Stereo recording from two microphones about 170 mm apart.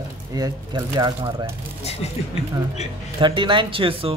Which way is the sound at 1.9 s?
35° left (ahead or behind).